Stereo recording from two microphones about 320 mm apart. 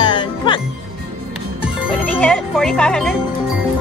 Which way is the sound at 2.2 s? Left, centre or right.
Centre.